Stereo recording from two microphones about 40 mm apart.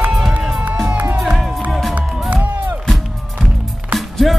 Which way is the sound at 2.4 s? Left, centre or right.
Right.